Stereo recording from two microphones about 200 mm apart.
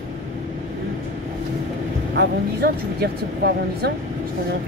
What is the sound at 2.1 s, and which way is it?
Speech, 55° right (ahead or behind).